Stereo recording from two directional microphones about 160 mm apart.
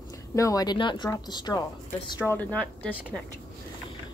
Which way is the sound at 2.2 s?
10° left (ahead or behind).